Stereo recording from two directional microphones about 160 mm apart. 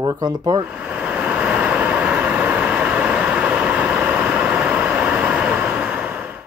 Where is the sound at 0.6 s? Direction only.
10° right (ahead or behind).